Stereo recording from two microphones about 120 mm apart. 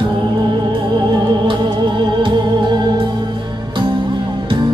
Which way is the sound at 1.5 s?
40° right (ahead or behind).